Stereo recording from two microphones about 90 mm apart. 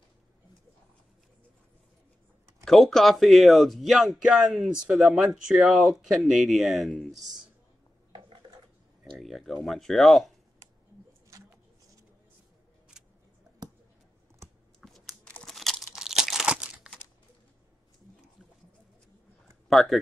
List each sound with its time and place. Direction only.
2.6 s speech: 5° left (ahead or behind)
8.1 s mechanisms: 65° right (ahead or behind)
9.2 s speech: centre (ahead or behind)
11.3 s a sound: 40° right (ahead or behind)
14.8 s a sound: centre (ahead or behind)
15.4 s crunch: 5° left (ahead or behind); by 16.9 s 10° right (ahead or behind)
19.7 s speech: centre (ahead or behind)